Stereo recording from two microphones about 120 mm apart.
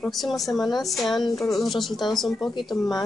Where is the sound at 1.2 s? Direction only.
30° left (ahead or behind).